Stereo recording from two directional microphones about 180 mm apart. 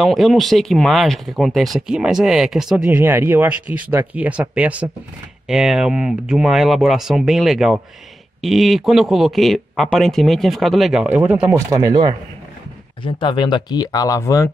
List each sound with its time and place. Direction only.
0.0 s speech: centre (ahead or behind)
11.7 s speech: 20° right (ahead or behind)
13.0 s speech: 25° left (ahead or behind)